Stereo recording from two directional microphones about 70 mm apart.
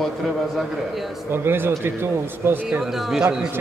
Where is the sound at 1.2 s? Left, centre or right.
Right.